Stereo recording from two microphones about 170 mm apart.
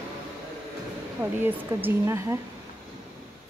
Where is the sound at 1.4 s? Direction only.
15° right (ahead or behind).